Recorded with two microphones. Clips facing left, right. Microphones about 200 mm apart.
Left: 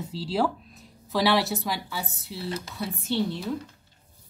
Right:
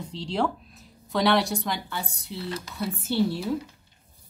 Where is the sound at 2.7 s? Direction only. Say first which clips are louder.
Right 3 dB; 5° right (ahead or behind).